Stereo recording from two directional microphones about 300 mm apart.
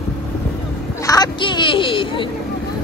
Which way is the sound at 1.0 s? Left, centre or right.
Centre.